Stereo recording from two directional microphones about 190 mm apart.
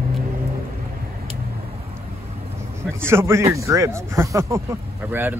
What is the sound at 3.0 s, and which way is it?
Speech, 15° right (ahead or behind).